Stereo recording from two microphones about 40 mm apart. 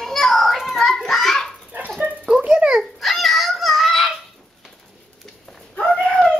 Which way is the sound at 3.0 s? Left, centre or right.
Centre.